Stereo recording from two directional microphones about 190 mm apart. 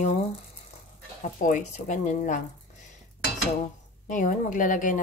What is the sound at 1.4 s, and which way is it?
Speech, 40° left (ahead or behind).